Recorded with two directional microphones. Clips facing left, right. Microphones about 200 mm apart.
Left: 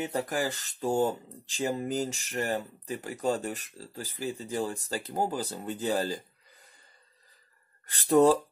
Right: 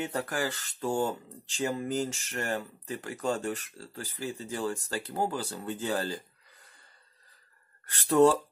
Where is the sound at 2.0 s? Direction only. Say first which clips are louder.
Even; 35° left (ahead or behind).